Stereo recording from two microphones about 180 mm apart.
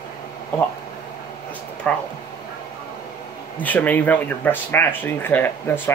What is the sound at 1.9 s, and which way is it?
Speech, 5° left (ahead or behind).